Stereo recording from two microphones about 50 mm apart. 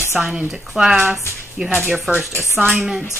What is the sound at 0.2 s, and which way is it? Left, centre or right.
A woman's voice, centre.